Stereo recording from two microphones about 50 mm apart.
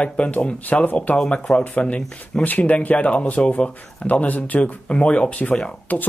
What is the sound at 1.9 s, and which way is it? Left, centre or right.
Speech, left.